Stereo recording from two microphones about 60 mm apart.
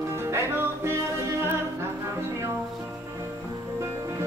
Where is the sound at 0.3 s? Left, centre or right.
Right.